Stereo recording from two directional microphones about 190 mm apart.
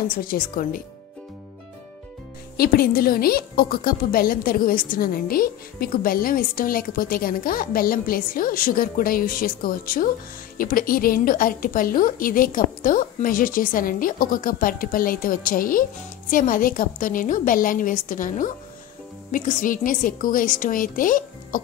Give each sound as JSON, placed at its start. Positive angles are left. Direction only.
{"t": 0.1, "sound": "a woman's voice", "side_deg": 50}
{"t": 2.5, "sound": "a woman's voice", "side_deg": 50}